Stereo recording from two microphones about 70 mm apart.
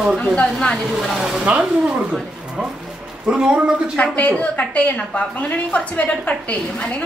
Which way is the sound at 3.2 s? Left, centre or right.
Centre.